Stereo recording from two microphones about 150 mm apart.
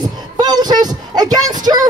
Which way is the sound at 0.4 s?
25° right (ahead or behind).